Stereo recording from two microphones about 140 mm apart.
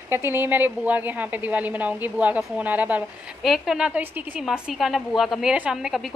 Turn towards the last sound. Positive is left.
turn(degrees=-5)  # may be behind; listen again after turning